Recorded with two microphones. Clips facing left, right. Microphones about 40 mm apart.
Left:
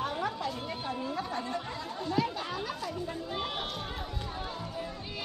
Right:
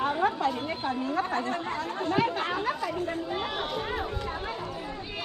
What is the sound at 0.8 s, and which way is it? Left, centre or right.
Speech, right.